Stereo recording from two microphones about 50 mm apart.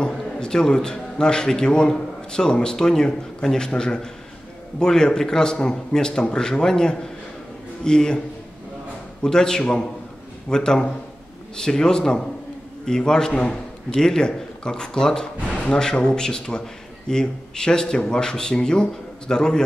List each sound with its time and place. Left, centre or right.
0.0 s a man's voice: centre
9.2 s speech: centre